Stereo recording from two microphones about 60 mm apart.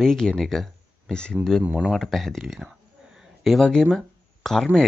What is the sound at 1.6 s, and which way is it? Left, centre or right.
Speech, right.